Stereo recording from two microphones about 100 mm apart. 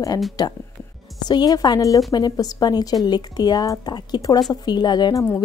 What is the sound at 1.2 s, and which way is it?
A woman's voice, 40° left (ahead or behind).